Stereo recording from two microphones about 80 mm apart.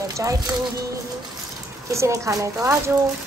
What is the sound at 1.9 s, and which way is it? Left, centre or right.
Speech, right.